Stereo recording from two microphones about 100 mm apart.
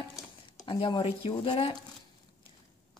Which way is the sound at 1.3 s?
65° left (ahead or behind).